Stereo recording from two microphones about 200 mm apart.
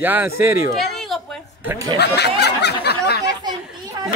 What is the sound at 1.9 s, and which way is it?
Snicker, 55° left (ahead or behind).